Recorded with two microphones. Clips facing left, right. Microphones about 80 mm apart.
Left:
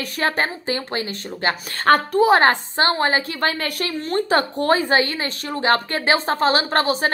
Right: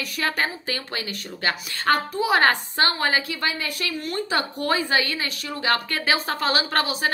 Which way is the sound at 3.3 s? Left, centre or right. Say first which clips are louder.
Left 5 dB; left.